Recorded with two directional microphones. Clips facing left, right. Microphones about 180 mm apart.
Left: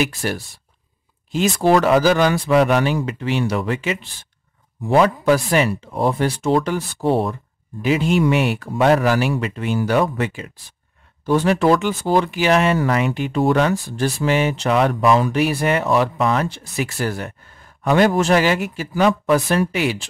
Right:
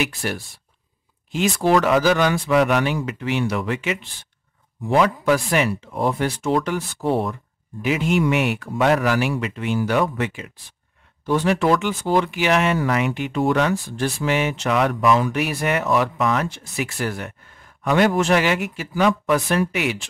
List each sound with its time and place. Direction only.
0.0 s speech: 40° left (ahead or behind)